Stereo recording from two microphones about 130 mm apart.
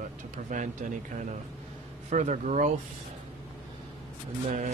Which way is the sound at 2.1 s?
65° right (ahead or behind).